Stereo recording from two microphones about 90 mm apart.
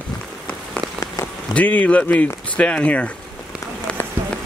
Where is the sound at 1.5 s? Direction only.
15° left (ahead or behind).